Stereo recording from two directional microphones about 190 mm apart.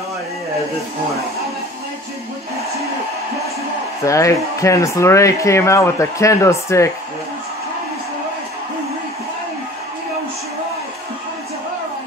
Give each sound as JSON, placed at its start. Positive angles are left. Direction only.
{"t": 4.0, "sound": "speech", "side_deg": 15}